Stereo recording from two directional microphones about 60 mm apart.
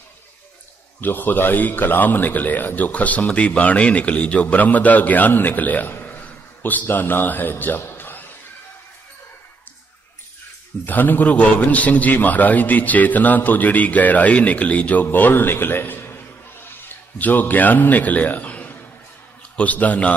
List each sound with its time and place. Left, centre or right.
1.0 s a man's voice: left
6.0 s a sound: left
10.9 s a man's voice: left